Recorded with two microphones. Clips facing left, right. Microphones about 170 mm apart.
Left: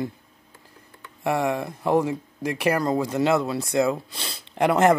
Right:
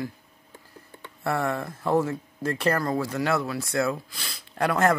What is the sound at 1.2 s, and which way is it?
Speech, 15° left (ahead or behind).